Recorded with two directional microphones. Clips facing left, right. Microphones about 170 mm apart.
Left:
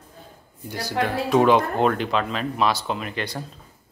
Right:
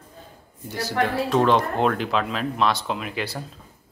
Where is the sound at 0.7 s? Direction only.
Centre (ahead or behind).